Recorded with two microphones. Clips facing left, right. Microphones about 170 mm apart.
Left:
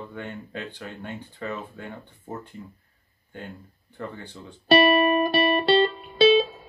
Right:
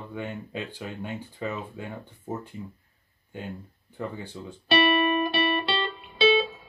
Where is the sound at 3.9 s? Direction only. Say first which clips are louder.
Right 2 dB; 10° right (ahead or behind).